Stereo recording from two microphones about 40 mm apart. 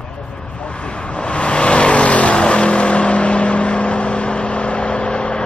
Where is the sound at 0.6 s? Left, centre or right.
Left.